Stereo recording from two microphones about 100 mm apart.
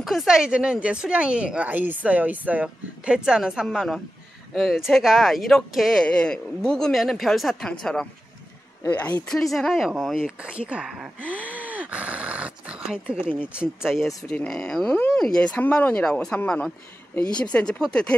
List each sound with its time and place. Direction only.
0.0 s speech: centre (ahead or behind)
8.8 s speech: 15° left (ahead or behind)
9.3 s speech: 5° left (ahead or behind)
11.3 s a sound: 15° right (ahead or behind)
13.1 s speech: 10° right (ahead or behind); by 18.1 s 10° left (ahead or behind)